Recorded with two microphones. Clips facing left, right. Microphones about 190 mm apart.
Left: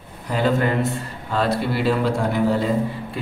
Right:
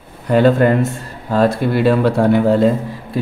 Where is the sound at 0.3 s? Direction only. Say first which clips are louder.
Right 8 dB; 60° right (ahead or behind).